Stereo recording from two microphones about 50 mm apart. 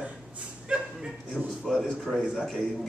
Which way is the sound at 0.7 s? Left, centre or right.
Right.